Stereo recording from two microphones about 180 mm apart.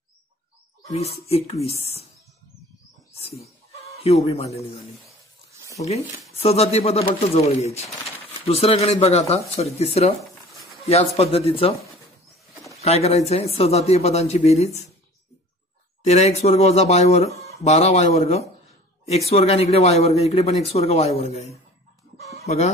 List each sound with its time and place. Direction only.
0.9 s speech: 35° left (ahead or behind)
3.7 s chicken: 35° left (ahead or behind)
4.6 s speech: 30° left (ahead or behind)
11.1 s speech: 35° left (ahead or behind)
12.8 s speech: 35° left (ahead or behind)
16.1 s speech: 35° left (ahead or behind)